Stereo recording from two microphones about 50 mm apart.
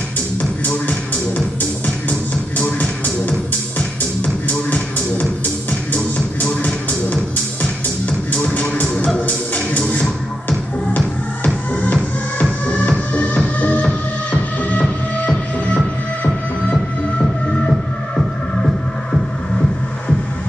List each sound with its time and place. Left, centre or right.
0.4 s music: left
8.3 s music: left
11.4 s music: left
16.7 s music: centre